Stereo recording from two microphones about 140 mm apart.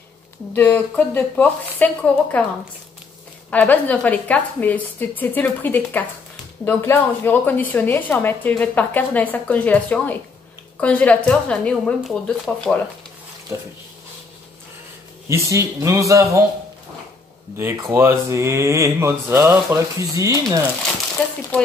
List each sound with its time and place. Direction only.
0.6 s a woman's voice: 10° left (ahead or behind)
3.4 s a woman's voice: 10° left (ahead or behind)
15.2 s speech: 20° right (ahead or behind)
17.6 s speech: 20° right (ahead or behind)
21.2 s a woman's voice: 10° left (ahead or behind)